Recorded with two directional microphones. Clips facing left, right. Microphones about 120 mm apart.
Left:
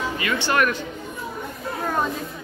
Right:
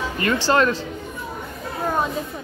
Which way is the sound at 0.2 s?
40° right (ahead or behind).